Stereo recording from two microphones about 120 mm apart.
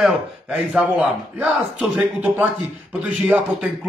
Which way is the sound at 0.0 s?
5° right (ahead or behind).